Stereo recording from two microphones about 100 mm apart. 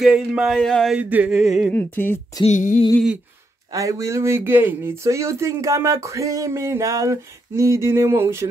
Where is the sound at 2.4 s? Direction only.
40° left (ahead or behind).